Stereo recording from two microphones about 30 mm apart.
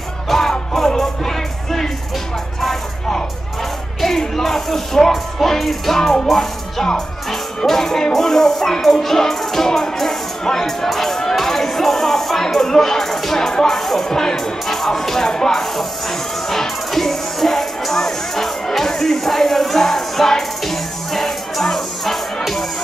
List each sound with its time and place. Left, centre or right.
0.3 s music: centre
4.4 s music: centre
7.2 s music: centre
10.4 s speech: centre
13.7 s music: centre
14.0 s music: centre
15.6 s music: centre